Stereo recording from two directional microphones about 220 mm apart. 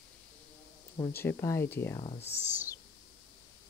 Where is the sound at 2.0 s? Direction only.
25° left (ahead or behind).